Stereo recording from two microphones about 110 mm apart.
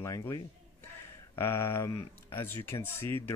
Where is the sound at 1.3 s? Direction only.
20° left (ahead or behind).